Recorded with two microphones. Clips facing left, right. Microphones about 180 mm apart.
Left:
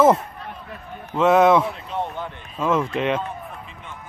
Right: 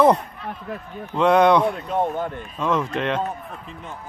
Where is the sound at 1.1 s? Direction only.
5° left (ahead or behind).